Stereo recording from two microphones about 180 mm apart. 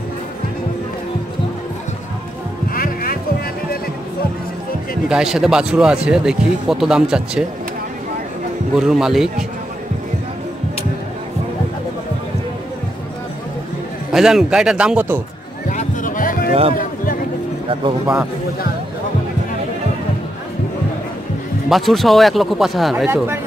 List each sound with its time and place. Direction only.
2.7 s music: 55° left (ahead or behind)
5.0 s speech: 5° right (ahead or behind)
8.7 s speech: 5° right (ahead or behind)
14.1 s speech: 5° right (ahead or behind)
15.7 s music: 45° left (ahead or behind)
16.7 s a sound: 50° left (ahead or behind)
21.6 s speech: centre (ahead or behind)
23.0 s speech: 10° right (ahead or behind)